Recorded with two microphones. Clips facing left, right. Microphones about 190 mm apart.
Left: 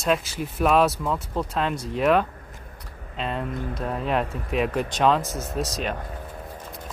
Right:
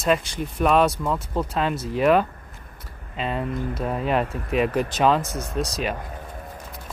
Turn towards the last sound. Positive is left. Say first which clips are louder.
# right 1 dB
turn(degrees=0)  # may be behind; listen again after turning